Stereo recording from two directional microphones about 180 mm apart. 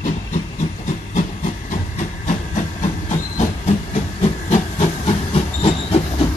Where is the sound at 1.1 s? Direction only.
45° left (ahead or behind).